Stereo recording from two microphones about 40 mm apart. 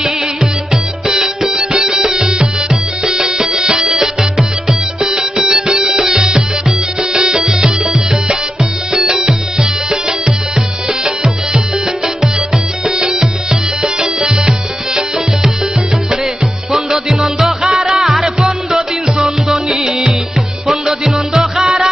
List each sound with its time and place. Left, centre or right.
1.0 s music: centre
8.9 s music: centre
12.8 s music: centre
16.7 s music: centre
20.6 s music: centre